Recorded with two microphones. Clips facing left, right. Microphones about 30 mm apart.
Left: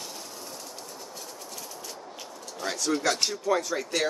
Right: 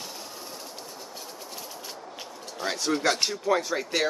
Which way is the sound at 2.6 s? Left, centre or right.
Right.